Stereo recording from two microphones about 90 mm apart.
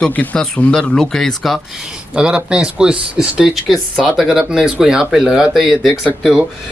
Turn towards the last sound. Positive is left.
turn(degrees=-5)  # may be behind; listen again after turning